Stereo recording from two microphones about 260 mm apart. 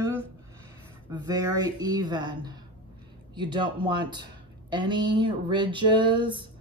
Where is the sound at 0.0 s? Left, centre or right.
Centre.